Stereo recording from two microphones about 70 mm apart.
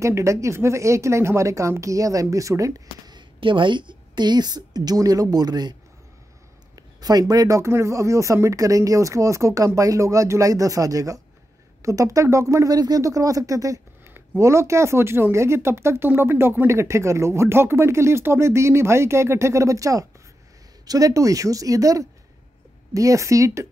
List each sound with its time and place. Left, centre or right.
0.0 s speech: right
3.7 s speech: right
12.7 s speech: right
13.0 s speech: right